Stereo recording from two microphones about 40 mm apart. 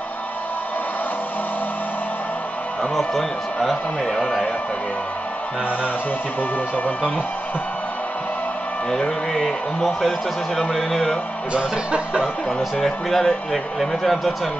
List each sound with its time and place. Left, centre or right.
2.9 s a man's voice: centre
9.3 s a man's voice: centre
11.5 s speech: right
12.8 s speech: centre